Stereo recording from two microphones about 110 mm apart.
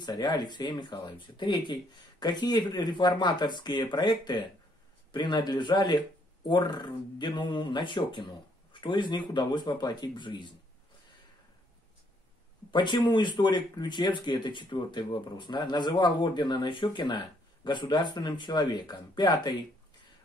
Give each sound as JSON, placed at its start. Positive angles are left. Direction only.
{"t": 0.0, "sound": "speech", "side_deg": 40}
{"t": 12.7, "sound": "speech", "side_deg": 45}